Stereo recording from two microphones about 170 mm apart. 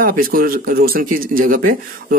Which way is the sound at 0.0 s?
55° right (ahead or behind).